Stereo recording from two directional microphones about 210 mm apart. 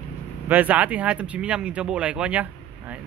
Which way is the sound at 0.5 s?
10° right (ahead or behind).